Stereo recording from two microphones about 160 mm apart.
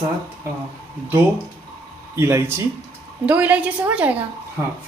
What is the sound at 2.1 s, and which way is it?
Speech, 15° right (ahead or behind).